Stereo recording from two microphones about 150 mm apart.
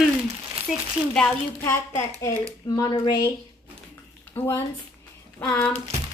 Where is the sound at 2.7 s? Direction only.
25° left (ahead or behind).